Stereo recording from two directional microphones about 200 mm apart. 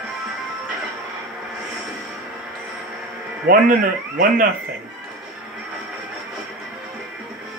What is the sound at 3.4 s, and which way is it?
Speech, 45° right (ahead or behind).